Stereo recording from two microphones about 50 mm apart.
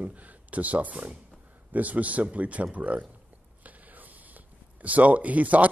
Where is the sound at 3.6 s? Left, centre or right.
Right.